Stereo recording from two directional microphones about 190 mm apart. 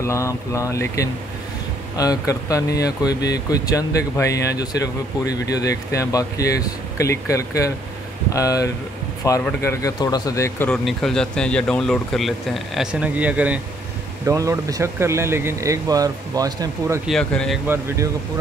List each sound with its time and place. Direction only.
0.0 s speech: 15° left (ahead or behind)
10.9 s speech: centre (ahead or behind); by 17.0 s 15° right (ahead or behind)
17.1 s speech: 5° left (ahead or behind)
17.6 s speech: 15° right (ahead or behind)